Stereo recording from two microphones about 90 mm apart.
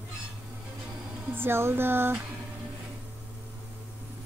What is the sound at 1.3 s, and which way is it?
Speech, 25° right (ahead or behind).